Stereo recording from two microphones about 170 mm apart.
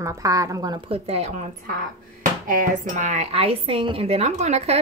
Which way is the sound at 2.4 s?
55° right (ahead or behind).